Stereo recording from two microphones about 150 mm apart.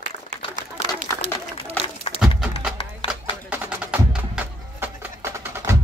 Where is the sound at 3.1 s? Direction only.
10° right (ahead or behind).